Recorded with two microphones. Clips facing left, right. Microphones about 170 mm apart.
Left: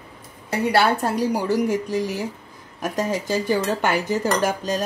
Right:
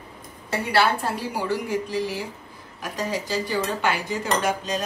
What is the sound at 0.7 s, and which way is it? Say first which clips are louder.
A woman's voice: left 2 dB; 40° left (ahead or behind).